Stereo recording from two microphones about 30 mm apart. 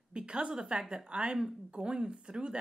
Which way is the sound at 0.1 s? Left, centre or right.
Right.